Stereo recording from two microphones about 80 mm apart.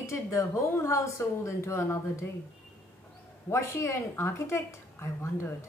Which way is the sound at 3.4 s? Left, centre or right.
Left.